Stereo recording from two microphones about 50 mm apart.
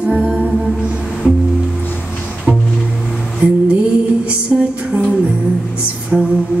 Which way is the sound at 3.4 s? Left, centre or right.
Right.